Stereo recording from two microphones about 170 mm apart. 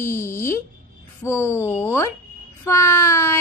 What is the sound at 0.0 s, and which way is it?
A woman's voice, 15° left (ahead or behind).